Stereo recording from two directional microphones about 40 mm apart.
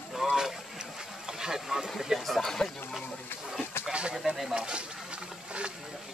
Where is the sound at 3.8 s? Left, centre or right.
Right.